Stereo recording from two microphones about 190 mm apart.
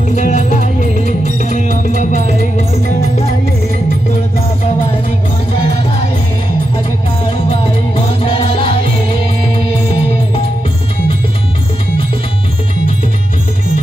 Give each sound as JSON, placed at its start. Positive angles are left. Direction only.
{"t": 0.1, "sound": "music", "side_deg": 40}
{"t": 7.4, "sound": "music", "side_deg": 30}